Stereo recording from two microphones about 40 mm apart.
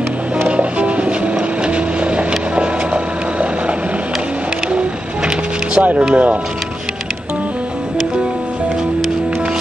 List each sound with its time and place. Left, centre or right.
0.5 s music: right
1.6 s boat: right
5.8 s speech: right